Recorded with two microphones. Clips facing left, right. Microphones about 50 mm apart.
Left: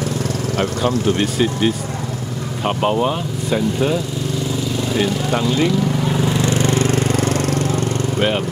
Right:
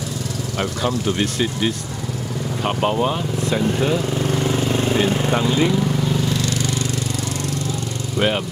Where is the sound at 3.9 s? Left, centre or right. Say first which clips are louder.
Right 1 dB; right.